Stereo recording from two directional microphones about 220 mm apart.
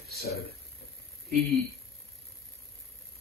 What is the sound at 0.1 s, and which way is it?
Speech, 45° left (ahead or behind).